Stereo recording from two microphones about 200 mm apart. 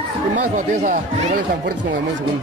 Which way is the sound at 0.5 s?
40° right (ahead or behind).